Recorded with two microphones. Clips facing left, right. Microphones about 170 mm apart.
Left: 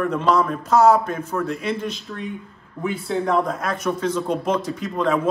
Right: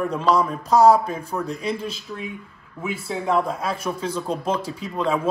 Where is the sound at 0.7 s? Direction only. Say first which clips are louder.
Right 1 dB; 35° right (ahead or behind).